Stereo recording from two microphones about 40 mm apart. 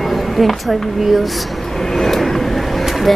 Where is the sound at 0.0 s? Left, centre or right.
Centre.